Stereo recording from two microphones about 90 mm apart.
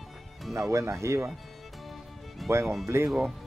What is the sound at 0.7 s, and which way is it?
Speech, 30° right (ahead or behind).